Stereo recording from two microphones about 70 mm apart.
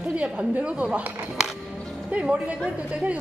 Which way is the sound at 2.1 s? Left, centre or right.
Centre.